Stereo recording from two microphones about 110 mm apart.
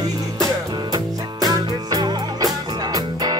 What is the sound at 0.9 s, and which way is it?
Music, 35° right (ahead or behind).